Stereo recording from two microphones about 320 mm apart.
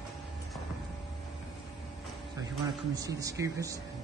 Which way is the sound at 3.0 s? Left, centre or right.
Centre.